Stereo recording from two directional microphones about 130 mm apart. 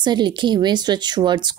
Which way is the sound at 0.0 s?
35° right (ahead or behind).